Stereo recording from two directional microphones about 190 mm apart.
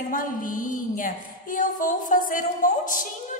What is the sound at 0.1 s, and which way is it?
A woman's voice, 45° left (ahead or behind).